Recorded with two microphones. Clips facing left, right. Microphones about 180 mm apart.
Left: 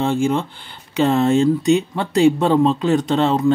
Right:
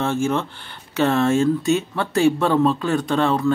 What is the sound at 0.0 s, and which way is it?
Speech, 15° left (ahead or behind).